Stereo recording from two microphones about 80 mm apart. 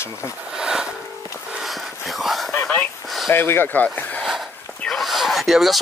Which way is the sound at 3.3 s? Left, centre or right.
Left.